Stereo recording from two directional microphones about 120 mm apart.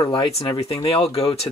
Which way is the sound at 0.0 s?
40° left (ahead or behind).